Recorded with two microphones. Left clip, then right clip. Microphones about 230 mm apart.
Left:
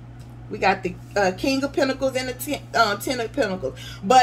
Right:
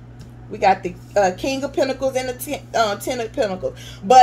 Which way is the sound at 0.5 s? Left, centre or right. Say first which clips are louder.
Right 4 dB; centre.